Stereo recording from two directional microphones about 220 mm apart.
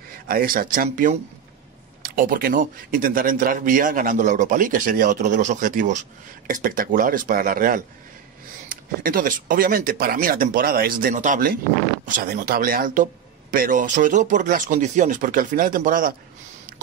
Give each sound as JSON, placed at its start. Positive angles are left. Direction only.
{"t": 0.3, "sound": "speech", "side_deg": -40}